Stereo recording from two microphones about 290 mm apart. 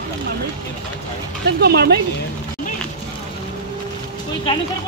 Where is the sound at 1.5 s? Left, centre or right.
Right.